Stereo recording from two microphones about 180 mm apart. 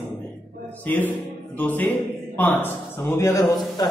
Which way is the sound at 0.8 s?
10° left (ahead or behind).